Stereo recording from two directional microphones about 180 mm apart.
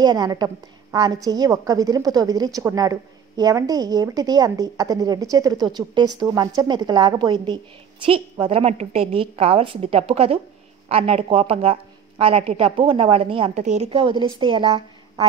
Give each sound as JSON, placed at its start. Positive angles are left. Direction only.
{"t": 0.0, "sound": "a woman's voice", "side_deg": -20}